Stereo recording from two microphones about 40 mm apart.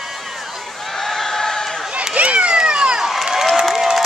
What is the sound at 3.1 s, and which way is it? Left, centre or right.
Crowd, centre.